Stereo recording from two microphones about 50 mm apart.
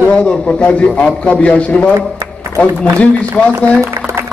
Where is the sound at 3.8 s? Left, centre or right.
Right.